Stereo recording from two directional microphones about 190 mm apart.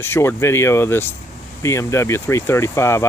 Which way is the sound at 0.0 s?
10° left (ahead or behind).